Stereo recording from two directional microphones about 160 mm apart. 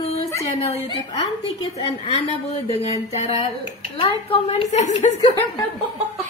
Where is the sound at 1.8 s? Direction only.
35° left (ahead or behind).